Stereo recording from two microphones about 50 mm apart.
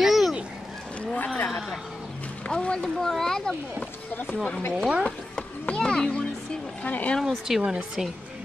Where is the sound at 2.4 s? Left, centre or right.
Centre.